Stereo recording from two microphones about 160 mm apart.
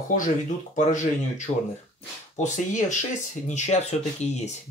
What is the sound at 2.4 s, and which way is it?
Speech, 50° left (ahead or behind).